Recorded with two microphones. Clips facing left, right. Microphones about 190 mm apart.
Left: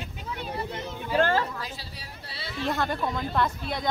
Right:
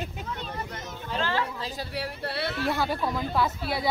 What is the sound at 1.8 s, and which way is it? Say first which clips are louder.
Speech: right 11 dB; 65° right (ahead or behind).